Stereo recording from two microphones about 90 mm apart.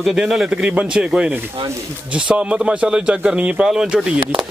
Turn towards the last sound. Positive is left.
turn(degrees=-10)  # may be behind; listen again after turning